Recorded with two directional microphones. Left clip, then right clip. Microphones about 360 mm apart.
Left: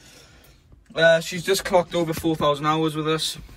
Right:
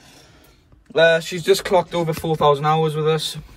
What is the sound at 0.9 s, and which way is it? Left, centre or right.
Speech, centre.